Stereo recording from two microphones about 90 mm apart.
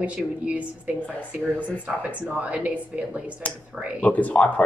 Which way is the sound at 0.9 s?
15° left (ahead or behind).